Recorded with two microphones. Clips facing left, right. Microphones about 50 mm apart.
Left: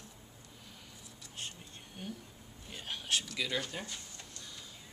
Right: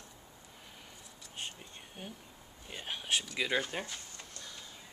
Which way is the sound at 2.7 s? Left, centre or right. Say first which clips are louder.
Right 1 dB; centre.